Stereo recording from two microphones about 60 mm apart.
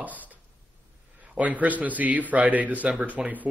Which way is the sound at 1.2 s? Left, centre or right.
Right.